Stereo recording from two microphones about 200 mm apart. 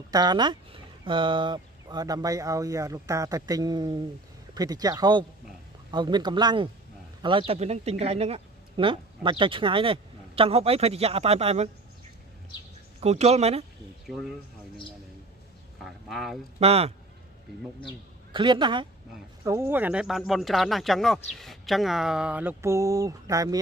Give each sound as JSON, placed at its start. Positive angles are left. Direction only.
{"t": 0.1, "sound": "a man's voice", "side_deg": -20}
{"t": 13.0, "sound": "a man's voice", "side_deg": -35}
{"t": 14.0, "sound": "speech", "side_deg": 0}
{"t": 15.8, "sound": "a sound", "side_deg": 0}
{"t": 16.5, "sound": "a man's voice", "side_deg": -30}
{"t": 18.3, "sound": "speech", "side_deg": -25}